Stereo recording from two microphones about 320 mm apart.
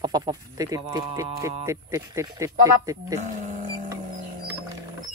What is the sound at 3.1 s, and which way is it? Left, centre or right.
Wild animals, right.